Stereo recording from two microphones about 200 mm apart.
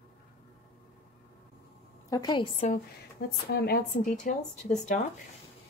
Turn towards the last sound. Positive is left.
turn(degrees=40)  # may be behind; listen again after turning